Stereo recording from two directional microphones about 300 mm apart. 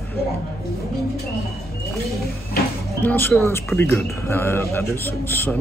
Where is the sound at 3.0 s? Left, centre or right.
Centre.